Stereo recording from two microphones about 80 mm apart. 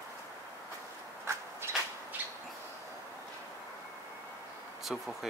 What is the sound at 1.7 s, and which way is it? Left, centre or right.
Bird, right.